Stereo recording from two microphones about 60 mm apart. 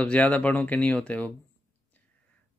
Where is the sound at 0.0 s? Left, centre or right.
Left.